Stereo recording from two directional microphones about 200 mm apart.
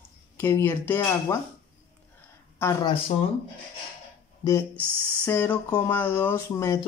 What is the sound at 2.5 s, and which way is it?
Speech, 15° left (ahead or behind).